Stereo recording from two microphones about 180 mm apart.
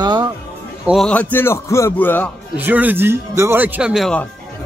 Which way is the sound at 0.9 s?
5° left (ahead or behind).